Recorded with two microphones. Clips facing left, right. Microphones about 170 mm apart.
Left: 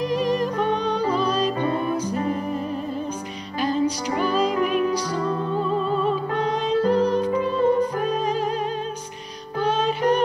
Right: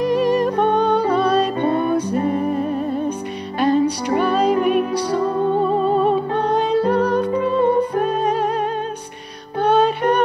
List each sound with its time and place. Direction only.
0.0 s music: 60° right (ahead or behind)
3.5 s music: 60° right (ahead or behind)
5.9 s music: 60° right (ahead or behind)